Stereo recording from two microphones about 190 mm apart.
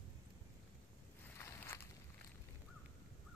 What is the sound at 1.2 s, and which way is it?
Walk, 10° left (ahead or behind).